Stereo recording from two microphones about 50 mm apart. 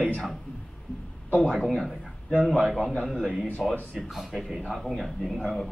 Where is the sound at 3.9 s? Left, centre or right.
Centre.